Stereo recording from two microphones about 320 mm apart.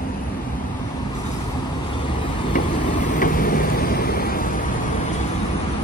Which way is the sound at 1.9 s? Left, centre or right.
Centre.